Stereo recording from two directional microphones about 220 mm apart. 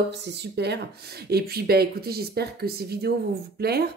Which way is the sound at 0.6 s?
50° right (ahead or behind).